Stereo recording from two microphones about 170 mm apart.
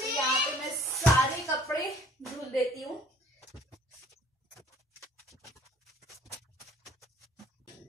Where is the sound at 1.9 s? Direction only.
Centre (ahead or behind).